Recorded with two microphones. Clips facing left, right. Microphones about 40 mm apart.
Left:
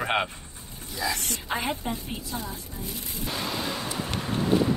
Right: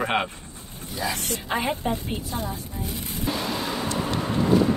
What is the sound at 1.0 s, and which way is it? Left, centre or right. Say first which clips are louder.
Speech: right 1 dB; right.